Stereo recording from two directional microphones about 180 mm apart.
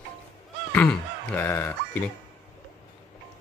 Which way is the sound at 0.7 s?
10° left (ahead or behind).